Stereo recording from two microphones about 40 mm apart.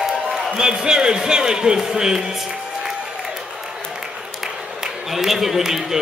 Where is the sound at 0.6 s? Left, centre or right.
Centre.